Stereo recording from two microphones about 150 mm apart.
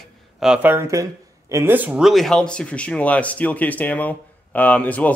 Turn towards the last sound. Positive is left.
turn(degrees=10)  # may be behind; listen again after turning